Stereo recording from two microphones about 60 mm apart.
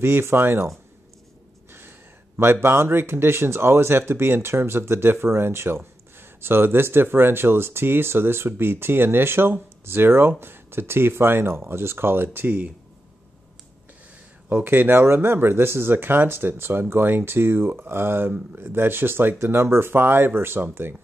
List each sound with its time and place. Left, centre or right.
0.0 s speech: right
1.7 s speech: right
14.5 s speech: right